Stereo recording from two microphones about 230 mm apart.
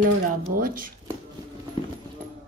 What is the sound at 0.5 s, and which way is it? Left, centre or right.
Speech, right.